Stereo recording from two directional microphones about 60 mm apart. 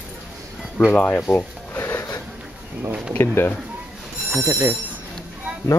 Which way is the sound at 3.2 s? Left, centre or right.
Left.